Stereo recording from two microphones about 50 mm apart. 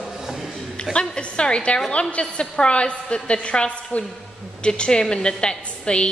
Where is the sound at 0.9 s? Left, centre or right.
Centre.